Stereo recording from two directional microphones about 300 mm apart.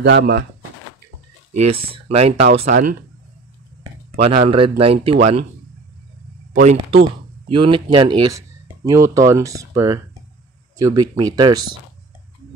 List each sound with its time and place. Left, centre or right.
0.0 s speech: right
1.8 s a man's voice: centre
2.6 s speech: right
4.1 s a man's voice: centre
6.5 s a man's voice: right